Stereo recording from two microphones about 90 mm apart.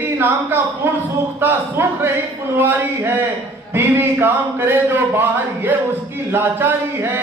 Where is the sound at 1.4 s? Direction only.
20° right (ahead or behind).